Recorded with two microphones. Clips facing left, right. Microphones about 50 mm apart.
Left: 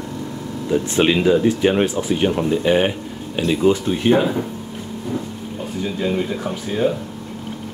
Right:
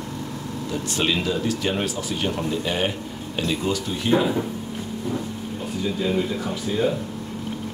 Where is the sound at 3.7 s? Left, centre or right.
Left.